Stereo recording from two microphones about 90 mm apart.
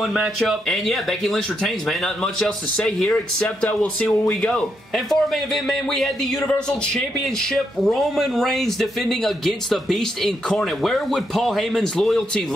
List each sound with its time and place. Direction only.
0.4 s a man's voice: centre (ahead or behind)